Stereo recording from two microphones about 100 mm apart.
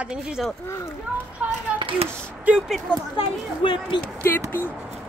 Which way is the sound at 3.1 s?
60° left (ahead or behind).